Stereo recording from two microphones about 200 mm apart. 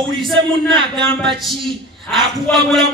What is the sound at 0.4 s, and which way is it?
Speech, 25° right (ahead or behind).